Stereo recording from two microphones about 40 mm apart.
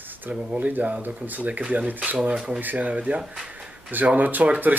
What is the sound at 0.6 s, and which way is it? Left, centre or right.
Speech, right.